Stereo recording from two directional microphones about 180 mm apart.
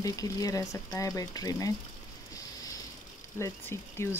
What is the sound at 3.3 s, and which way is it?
Speech, 15° left (ahead or behind).